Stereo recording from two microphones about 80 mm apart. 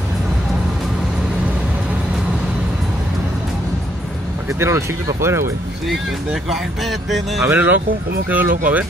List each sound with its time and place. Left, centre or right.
4.5 s speech: right
5.9 s speech: centre
7.4 s speech: right